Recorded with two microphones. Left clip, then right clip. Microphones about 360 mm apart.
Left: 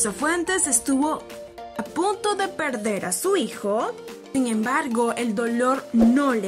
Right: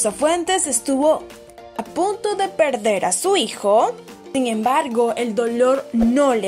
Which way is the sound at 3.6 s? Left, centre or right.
Right.